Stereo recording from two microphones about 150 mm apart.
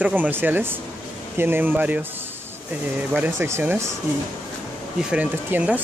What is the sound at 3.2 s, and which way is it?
Speech, 15° right (ahead or behind).